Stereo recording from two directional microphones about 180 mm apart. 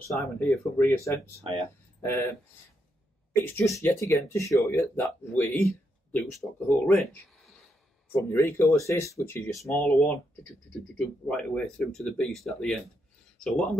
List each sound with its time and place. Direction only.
0.2 s speech: centre (ahead or behind)
0.7 s speech: 15° left (ahead or behind)
3.4 s speech: 15° left (ahead or behind)
8.1 s speech: 15° left (ahead or behind)